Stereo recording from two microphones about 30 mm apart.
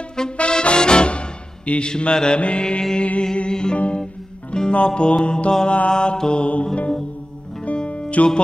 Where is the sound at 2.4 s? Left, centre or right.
Left.